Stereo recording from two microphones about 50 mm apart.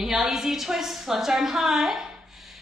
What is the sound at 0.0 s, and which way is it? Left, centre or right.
A woman's voice, centre.